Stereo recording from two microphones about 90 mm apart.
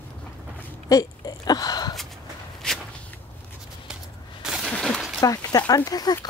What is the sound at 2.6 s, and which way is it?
Walk, 10° left (ahead or behind).